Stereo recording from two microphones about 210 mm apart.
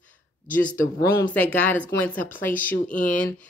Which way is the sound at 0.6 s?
40° left (ahead or behind).